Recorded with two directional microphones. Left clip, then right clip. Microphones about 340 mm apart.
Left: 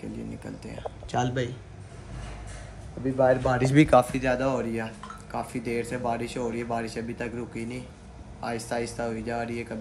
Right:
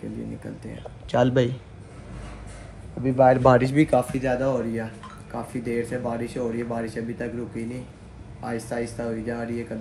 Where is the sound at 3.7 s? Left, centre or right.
Left.